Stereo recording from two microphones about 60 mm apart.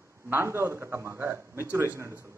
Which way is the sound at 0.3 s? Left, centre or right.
Right.